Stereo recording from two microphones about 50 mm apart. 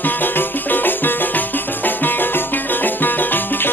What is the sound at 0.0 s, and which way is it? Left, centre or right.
Music, left.